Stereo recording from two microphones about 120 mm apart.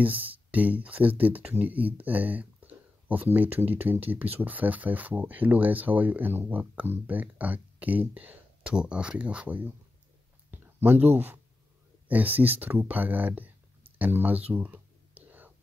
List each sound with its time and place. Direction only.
0.0 s speech: 15° right (ahead or behind)
10.5 s a sound: 15° right (ahead or behind)
12.1 s speech: 15° right (ahead or behind)
13.9 s whispering: 15° right (ahead or behind)